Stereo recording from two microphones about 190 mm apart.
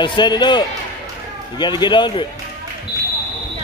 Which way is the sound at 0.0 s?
25° left (ahead or behind).